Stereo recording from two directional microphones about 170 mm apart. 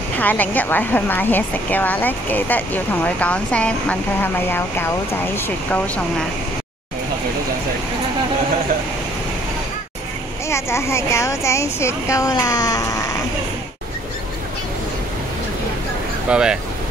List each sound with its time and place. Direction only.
0.2 s speech: 10° left (ahead or behind)
10.5 s speech: 15° left (ahead or behind)
16.3 s speech: 5° right (ahead or behind)